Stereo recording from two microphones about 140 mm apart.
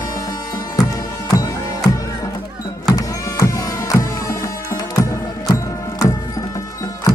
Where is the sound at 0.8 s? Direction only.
25° left (ahead or behind).